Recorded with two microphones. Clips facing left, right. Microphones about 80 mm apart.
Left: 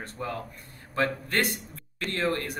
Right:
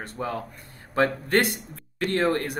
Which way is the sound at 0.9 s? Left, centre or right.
Right.